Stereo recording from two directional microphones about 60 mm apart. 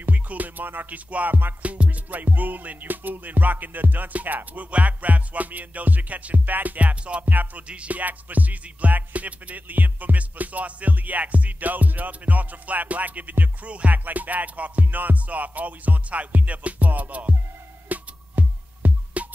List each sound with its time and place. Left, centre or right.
0.0 s music: right